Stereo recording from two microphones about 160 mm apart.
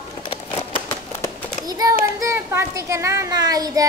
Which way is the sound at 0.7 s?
15° left (ahead or behind).